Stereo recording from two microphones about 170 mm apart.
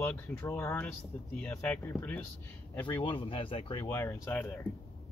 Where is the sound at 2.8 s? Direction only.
30° left (ahead or behind).